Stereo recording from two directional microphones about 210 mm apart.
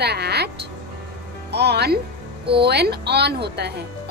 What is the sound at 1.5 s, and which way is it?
A woman's voice, 50° right (ahead or behind).